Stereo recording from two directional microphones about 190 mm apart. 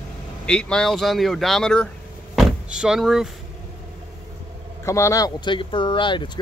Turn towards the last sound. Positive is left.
turn(degrees=25)  # may be behind; listen again after turning